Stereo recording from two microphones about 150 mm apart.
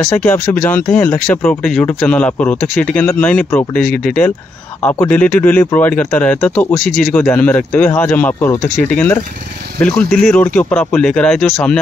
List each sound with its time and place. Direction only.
0.2 s speech: 10° left (ahead or behind)
4.8 s speech: 10° left (ahead or behind)
6.8 s speech: 65° left (ahead or behind)
7.2 s speech: 10° left (ahead or behind)